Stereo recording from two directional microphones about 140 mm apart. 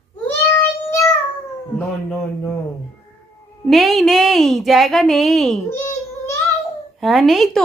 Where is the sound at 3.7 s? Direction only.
Centre (ahead or behind).